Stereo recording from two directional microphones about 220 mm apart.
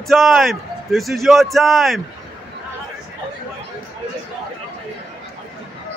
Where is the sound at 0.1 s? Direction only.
Centre (ahead or behind).